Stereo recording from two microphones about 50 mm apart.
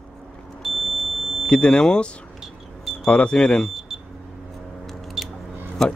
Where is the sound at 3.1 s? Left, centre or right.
Left.